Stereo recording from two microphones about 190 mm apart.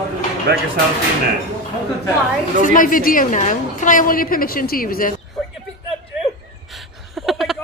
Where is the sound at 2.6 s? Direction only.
45° left (ahead or behind).